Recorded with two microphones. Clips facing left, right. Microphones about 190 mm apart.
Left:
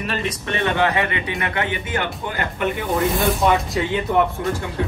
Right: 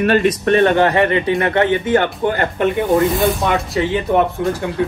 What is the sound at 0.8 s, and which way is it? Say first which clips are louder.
Speech: right 6 dB; 40° right (ahead or behind).